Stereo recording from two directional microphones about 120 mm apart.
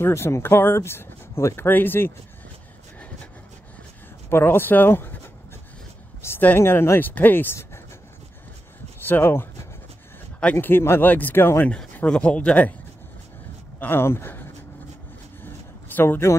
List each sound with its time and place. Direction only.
0.0 s speech: 20° left (ahead or behind)
4.3 s speech: 20° left (ahead or behind)
6.2 s speech: 15° left (ahead or behind)
9.0 s speech: 20° left (ahead or behind)
11.7 s speech: 5° left (ahead or behind)
13.7 s speech: 20° left (ahead or behind)
15.4 s a sound: 15° left (ahead or behind)